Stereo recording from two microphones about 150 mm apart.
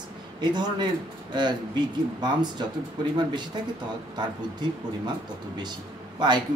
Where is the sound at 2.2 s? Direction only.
30° right (ahead or behind).